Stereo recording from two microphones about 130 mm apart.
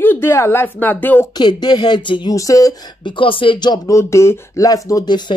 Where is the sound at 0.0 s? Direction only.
15° left (ahead or behind).